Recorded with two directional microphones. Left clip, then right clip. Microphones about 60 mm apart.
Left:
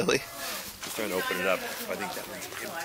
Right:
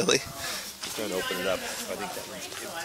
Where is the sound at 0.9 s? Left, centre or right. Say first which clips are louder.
Left 1 dB; left.